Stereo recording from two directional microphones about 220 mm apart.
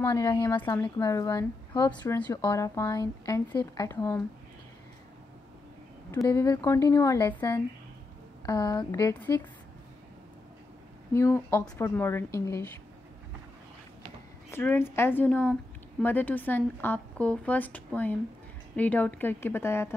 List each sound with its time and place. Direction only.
0.0 s speech: 15° left (ahead or behind)
6.2 s speech: 15° left (ahead or behind)
8.5 s speech: 20° left (ahead or behind)
11.1 s speech: 10° left (ahead or behind)
14.5 s speech: 10° left (ahead or behind)